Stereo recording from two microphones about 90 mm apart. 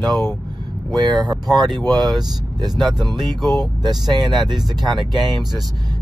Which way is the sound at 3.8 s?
50° right (ahead or behind).